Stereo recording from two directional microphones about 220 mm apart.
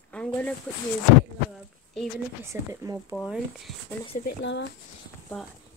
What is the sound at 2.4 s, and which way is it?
Speech, 15° right (ahead or behind).